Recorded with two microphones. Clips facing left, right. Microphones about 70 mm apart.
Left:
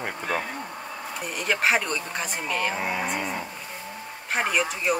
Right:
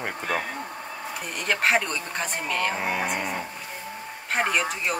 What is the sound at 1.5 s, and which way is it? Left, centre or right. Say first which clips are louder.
Speech: even; centre.